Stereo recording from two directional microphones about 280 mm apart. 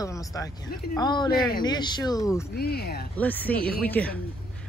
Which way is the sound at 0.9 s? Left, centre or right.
Centre.